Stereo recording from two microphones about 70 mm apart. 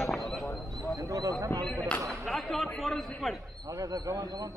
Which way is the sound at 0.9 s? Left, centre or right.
Right.